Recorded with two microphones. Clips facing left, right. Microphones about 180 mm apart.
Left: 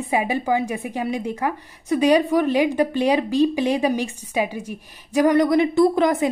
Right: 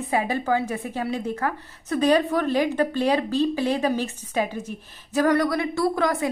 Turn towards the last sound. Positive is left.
turn(degrees=20)  # may be behind; listen again after turning